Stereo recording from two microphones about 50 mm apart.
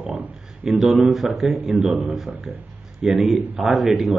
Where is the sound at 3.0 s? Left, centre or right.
Centre.